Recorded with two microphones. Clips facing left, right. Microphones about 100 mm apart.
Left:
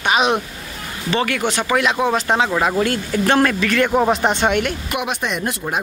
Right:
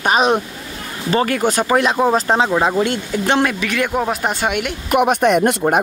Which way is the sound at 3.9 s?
Centre (ahead or behind).